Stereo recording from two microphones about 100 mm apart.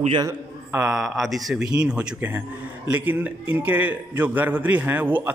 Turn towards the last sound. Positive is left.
turn(degrees=-20)  # may be behind; listen again after turning